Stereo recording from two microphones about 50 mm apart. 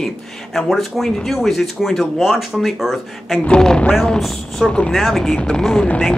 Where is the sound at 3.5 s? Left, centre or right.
Centre.